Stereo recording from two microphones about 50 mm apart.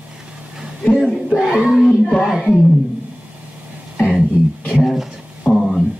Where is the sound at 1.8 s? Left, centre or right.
Centre.